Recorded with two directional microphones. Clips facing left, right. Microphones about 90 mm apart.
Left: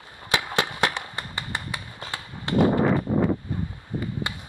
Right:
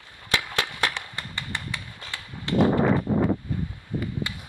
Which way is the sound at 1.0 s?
15° left (ahead or behind).